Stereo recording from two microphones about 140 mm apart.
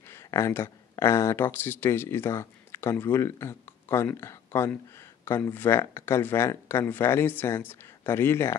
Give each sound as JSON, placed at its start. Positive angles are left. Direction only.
{"t": 0.1, "sound": "speech", "side_deg": 20}